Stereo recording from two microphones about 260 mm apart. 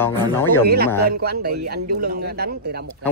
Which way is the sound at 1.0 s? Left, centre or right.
Right.